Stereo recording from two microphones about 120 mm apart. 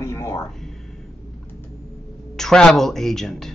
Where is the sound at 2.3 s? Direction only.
5° left (ahead or behind).